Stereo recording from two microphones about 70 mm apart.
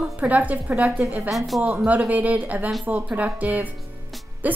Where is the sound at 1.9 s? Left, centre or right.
Right.